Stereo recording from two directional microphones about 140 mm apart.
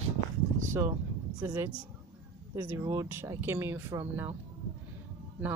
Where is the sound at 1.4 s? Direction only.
25° right (ahead or behind).